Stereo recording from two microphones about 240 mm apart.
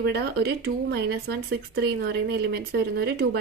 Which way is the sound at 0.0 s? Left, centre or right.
Right.